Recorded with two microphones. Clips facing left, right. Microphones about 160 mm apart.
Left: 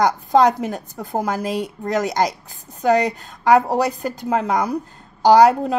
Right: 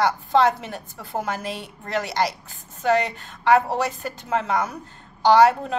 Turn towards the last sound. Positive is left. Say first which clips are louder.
# left 3 dB
turn(degrees=40)  # may be behind; listen again after turning